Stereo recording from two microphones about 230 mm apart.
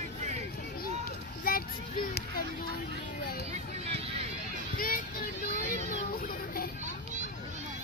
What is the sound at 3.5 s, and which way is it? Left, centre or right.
Vehicle, right.